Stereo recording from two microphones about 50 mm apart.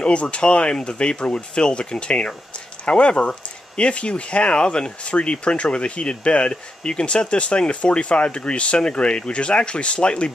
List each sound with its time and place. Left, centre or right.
0.0 s speech: left